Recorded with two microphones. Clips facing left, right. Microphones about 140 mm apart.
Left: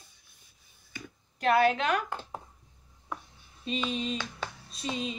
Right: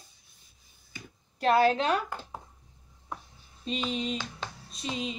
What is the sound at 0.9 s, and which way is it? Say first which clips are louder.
Speech: left 2 dB; 30° right (ahead or behind).